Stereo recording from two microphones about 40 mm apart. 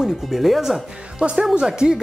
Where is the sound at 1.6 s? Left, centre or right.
Centre.